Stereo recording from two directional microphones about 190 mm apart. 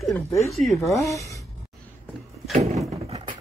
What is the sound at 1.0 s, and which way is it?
Speech, 15° left (ahead or behind).